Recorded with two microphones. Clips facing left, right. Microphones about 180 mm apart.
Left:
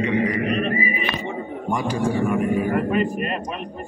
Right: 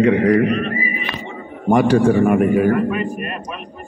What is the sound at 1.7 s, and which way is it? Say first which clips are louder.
A man's voice: right 10 dB; 70° right (ahead or behind).